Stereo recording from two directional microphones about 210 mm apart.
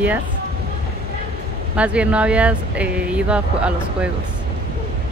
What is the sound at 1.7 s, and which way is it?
Speech, 5° right (ahead or behind).